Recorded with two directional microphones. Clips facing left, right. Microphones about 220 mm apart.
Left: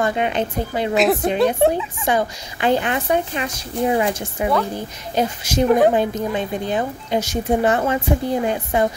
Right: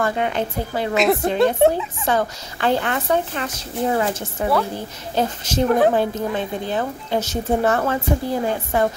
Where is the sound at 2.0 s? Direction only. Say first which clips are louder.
Even; 15° left (ahead or behind).